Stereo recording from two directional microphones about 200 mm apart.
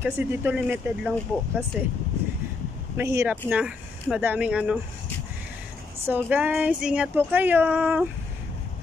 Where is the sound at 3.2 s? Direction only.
10° right (ahead or behind).